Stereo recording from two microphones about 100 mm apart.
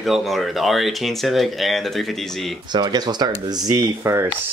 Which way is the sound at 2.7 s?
45° right (ahead or behind).